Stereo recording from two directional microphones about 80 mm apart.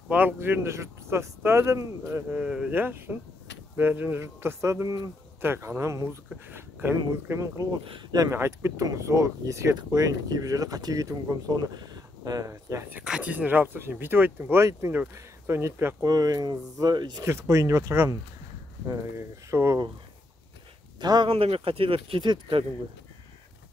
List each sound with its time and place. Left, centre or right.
0.1 s speech: right
2.3 s speech: centre
2.7 s speech: right
5.4 s speech: right
6.5 s a sound: right
7.1 s speech: right
7.8 s speech: right
8.3 s speech: right
9.8 s speech: right
11.5 s speech: right
13.0 s speech: centre; by 16.0 s right
16.0 s speech: right
17.2 s speech: right
21.0 s speech: right